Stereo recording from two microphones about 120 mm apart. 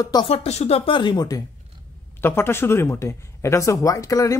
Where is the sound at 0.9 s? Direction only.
35° left (ahead or behind).